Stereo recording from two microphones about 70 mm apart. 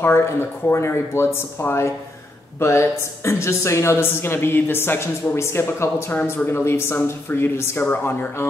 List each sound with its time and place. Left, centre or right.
0.0 s speech: left